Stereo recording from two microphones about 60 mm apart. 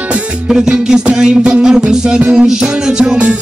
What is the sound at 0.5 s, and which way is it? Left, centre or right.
Music, centre.